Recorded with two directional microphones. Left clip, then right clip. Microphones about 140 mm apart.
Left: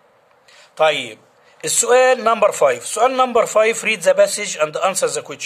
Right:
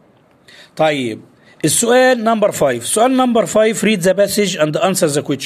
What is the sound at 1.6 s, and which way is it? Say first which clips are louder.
A man's voice: right 2 dB; 20° right (ahead or behind).